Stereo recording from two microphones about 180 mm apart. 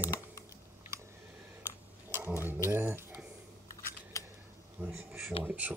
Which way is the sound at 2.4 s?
10° right (ahead or behind).